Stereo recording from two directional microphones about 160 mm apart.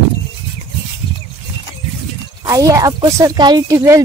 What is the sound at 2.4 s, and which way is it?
Speech, 20° right (ahead or behind).